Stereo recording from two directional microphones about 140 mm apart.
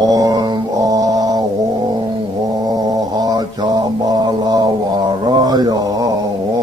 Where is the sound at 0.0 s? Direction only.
25° right (ahead or behind).